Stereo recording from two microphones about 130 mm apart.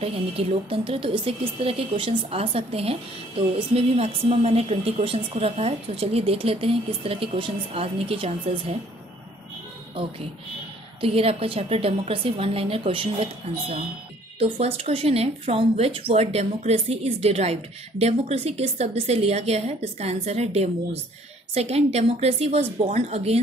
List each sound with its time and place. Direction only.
0.0 s a woman's voice: 50° right (ahead or behind)
11.0 s a woman's voice: 45° right (ahead or behind)